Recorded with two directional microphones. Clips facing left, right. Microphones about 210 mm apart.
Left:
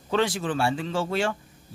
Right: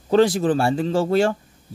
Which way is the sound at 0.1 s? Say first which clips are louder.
Right 8 dB; 40° right (ahead or behind).